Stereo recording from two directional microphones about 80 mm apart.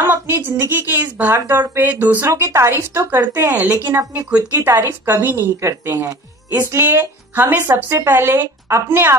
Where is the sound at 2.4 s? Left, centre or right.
Right.